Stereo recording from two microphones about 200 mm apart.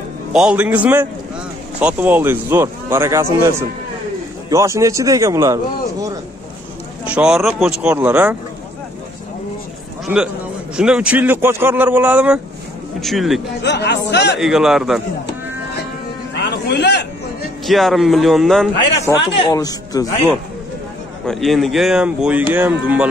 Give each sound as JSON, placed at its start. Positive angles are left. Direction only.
{"t": 0.3, "sound": "a man's voice", "side_deg": -5}
{"t": 4.5, "sound": "a man's voice", "side_deg": -15}
{"t": 7.2, "sound": "speech", "side_deg": 0}
{"t": 10.0, "sound": "a man's voice", "side_deg": -5}
{"t": 13.6, "sound": "speech", "side_deg": 55}
{"t": 14.4, "sound": "speech", "side_deg": 0}
{"t": 16.3, "sound": "music", "side_deg": 60}
{"t": 17.6, "sound": "speech", "side_deg": 0}
{"t": 19.1, "sound": "a man's voice", "side_deg": 15}
{"t": 21.3, "sound": "a man's voice", "side_deg": 0}